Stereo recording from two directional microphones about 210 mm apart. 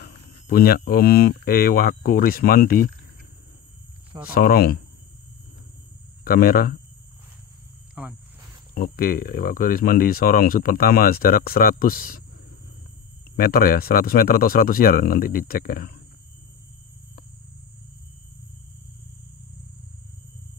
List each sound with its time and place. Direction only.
0.0 s speech: 45° left (ahead or behind)
4.3 s speech: 45° left (ahead or behind)
6.2 s speech: 45° left (ahead or behind)
7.9 s speech: 5° right (ahead or behind)
8.7 s speech: 45° left (ahead or behind)
13.4 s speech: 45° left (ahead or behind)